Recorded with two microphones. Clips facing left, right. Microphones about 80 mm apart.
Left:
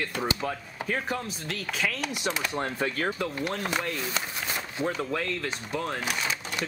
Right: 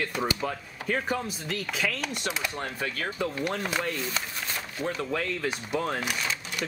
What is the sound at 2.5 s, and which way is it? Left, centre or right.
Speech, left.